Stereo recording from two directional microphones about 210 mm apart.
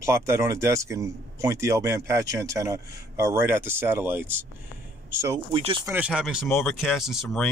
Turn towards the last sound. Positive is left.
turn(degrees=0)  # may be behind; listen again after turning